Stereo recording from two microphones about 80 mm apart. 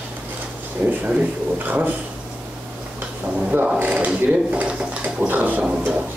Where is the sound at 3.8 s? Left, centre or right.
Centre.